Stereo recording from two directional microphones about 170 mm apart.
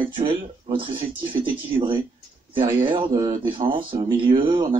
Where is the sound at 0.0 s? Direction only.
30° right (ahead or behind).